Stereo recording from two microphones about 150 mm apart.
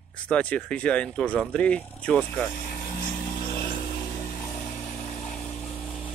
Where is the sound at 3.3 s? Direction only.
80° left.